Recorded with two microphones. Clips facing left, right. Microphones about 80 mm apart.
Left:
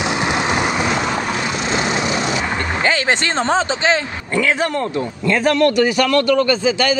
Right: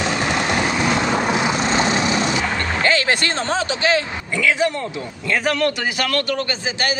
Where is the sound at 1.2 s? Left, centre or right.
Centre.